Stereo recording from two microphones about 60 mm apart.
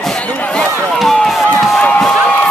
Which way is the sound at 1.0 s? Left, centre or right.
Centre.